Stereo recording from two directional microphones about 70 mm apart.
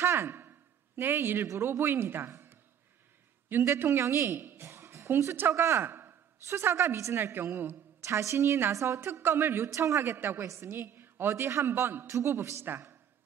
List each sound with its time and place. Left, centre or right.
0.0 s a man's voice: right
5.5 s a man's voice: right
9.7 s a woman's voice: right
10.4 s a woman's voice: right
10.7 s a woman's voice: right